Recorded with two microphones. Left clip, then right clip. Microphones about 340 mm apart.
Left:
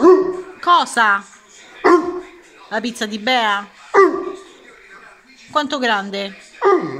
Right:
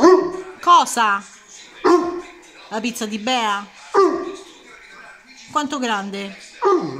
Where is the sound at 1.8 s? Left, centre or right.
Centre.